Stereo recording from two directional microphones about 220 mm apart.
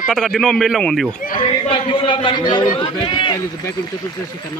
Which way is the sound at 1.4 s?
25° left (ahead or behind).